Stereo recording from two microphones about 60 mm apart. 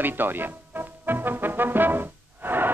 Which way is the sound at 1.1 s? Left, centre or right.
Right.